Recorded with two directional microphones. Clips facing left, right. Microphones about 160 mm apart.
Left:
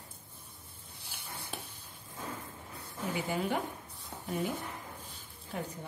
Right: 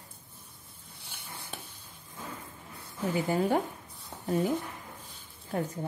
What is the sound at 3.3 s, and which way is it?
Speech, 40° right (ahead or behind).